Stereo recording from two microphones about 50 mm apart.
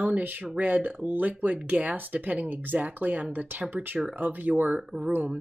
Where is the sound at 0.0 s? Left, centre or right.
Right.